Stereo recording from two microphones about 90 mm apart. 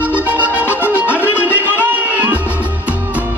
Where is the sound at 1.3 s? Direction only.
25° left (ahead or behind).